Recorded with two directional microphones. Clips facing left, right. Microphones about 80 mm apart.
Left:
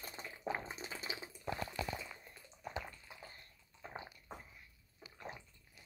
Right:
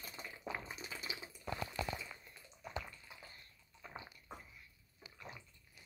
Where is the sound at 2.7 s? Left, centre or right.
Left.